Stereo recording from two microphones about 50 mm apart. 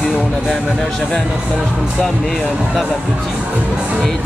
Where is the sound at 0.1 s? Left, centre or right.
Centre.